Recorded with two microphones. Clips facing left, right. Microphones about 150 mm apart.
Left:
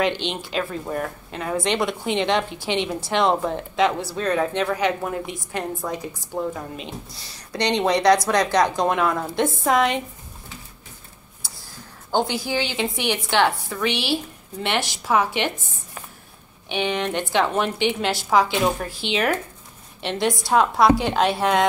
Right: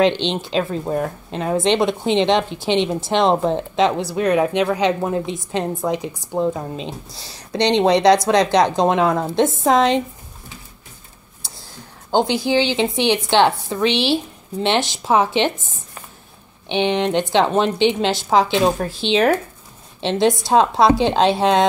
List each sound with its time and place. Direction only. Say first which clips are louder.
0.0 s speech: right 6 dB; 25° right (ahead or behind)
12.1 s speech: right 5 dB; 20° right (ahead or behind)
16.6 s speech: right 6 dB; 25° right (ahead or behind)